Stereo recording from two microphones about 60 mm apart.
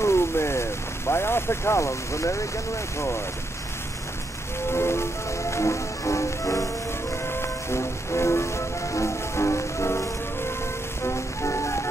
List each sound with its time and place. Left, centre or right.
0.0 s speech: left
4.7 s music: left
7.2 s music: left
11.1 s music: left